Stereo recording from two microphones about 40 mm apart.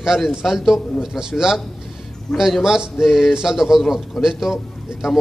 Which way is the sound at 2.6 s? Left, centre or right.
Centre.